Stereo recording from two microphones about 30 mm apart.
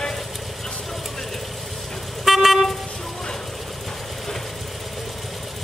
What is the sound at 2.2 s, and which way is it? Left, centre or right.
Vehicle, centre.